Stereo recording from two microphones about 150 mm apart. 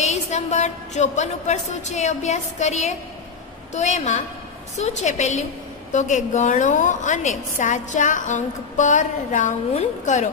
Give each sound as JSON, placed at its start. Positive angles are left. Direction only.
{"t": 0.0, "sound": "a woman's voice", "side_deg": 50}